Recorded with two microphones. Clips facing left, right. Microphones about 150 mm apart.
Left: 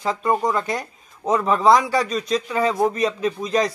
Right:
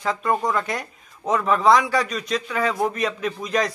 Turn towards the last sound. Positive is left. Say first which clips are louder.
# left 3 dB
turn(degrees=30)  # may be behind; listen again after turning